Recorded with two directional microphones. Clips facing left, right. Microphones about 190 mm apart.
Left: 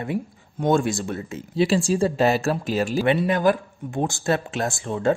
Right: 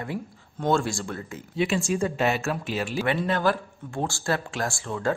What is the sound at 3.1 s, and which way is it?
Speech, 15° left (ahead or behind).